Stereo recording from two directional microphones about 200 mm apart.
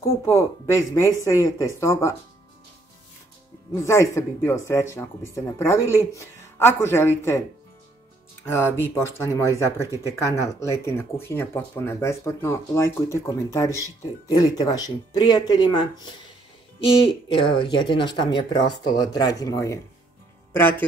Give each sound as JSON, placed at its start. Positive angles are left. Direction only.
{"t": 0.0, "sound": "speech", "side_deg": 15}
{"t": 3.7, "sound": "speech", "side_deg": 15}
{"t": 8.8, "sound": "speech", "side_deg": 15}